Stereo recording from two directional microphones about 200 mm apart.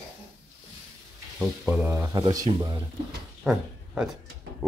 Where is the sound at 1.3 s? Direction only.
5° right (ahead or behind).